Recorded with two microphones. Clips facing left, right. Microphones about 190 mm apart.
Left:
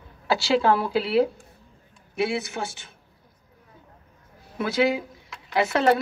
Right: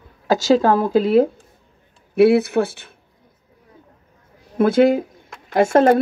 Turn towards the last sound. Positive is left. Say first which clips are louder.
# right 7 dB
turn(degrees=-50)  # may be behind; listen again after turning